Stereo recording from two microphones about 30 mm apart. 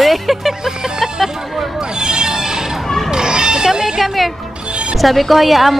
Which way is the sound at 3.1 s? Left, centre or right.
Right.